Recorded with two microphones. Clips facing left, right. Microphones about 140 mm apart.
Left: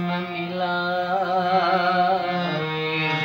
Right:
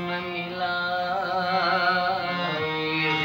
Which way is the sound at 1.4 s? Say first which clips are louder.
Left 6 dB; 10° left (ahead or behind).